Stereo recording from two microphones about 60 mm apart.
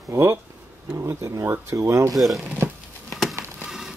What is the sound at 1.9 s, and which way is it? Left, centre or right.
Speech, right.